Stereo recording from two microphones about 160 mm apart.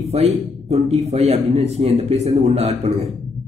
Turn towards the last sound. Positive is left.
turn(degrees=-40)  # may be behind; listen again after turning